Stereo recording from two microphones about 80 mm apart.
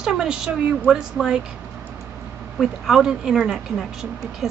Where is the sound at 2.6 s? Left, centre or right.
Centre.